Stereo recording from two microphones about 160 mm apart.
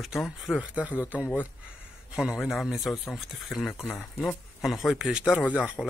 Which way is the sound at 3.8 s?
10° left (ahead or behind).